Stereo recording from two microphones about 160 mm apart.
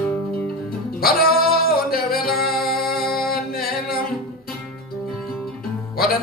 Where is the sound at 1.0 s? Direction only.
70° left (ahead or behind).